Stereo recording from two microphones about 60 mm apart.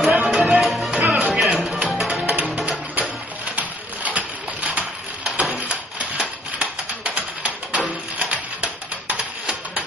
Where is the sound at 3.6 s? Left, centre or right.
Right.